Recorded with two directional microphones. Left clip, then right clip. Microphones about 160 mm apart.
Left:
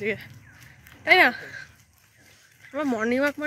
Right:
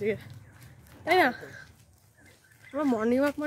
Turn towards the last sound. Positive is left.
turn(degrees=-5)  # may be behind; listen again after turning